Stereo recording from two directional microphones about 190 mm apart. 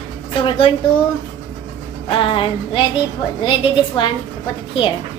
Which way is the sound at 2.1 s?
25° left (ahead or behind).